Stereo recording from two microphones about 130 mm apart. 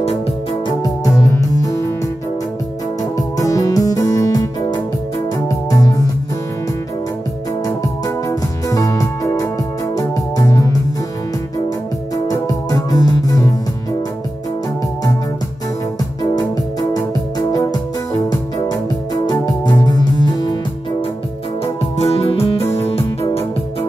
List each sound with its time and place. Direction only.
0.7 s music: 30° left (ahead or behind)
3.0 s music: 25° left (ahead or behind)
7.6 s music: 25° left (ahead or behind)
12.3 s music: 25° left (ahead or behind)
16.9 s music: 30° left (ahead or behind)
19.2 s music: 30° left (ahead or behind)
21.9 s music: 55° left (ahead or behind)